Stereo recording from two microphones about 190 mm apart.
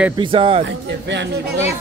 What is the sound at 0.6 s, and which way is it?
Speech, 70° right (ahead or behind).